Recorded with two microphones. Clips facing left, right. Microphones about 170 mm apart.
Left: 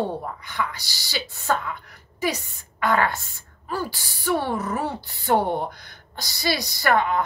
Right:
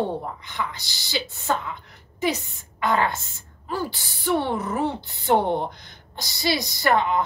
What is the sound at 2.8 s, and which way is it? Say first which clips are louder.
A woman's voice: left 1 dB; 20° right (ahead or behind).